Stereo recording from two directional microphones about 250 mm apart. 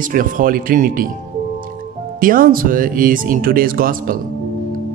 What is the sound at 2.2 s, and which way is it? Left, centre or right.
Speech, right.